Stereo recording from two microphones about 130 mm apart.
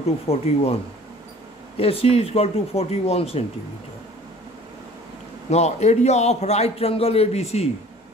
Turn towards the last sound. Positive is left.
turn(degrees=55)  # may be behind; listen again after turning